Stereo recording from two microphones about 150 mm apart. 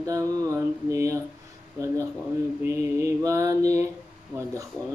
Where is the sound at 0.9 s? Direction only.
20° right (ahead or behind).